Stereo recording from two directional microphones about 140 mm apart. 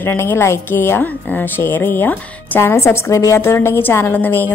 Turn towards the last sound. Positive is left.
turn(degrees=15)  # may be behind; listen again after turning